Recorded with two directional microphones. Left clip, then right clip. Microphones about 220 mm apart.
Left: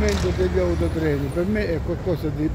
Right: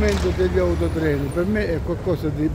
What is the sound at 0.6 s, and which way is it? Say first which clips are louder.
Speech: right 2 dB; 5° left (ahead or behind).